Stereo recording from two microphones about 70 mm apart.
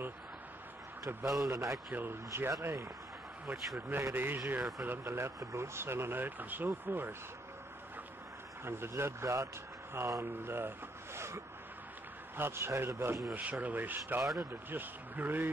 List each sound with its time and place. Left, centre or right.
1.0 s a man's voice: right
1.9 s speech: right
3.4 s speech: right
5.0 s speech: right
8.6 s speech: right
13.3 s speech: right